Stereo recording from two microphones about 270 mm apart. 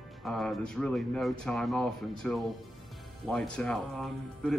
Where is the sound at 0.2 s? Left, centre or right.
Centre.